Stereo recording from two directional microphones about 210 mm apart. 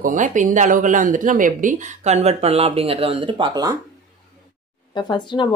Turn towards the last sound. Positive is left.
turn(degrees=20)  # may be behind; listen again after turning